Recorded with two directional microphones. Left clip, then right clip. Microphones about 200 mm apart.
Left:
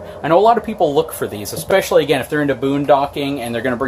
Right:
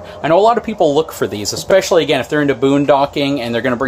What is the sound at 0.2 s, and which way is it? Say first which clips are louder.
Speech: right 1 dB; 20° right (ahead or behind).